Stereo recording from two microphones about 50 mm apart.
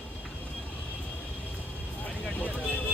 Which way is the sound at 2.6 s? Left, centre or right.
Left.